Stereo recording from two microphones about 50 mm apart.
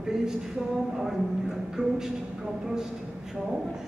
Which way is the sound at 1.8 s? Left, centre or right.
Right.